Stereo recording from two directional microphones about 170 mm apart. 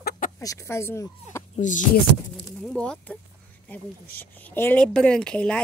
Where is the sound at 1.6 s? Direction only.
45° left (ahead or behind).